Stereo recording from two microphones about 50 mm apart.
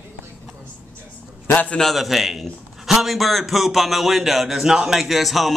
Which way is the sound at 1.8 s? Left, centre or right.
Centre.